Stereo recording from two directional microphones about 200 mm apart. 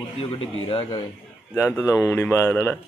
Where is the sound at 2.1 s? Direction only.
10° left (ahead or behind).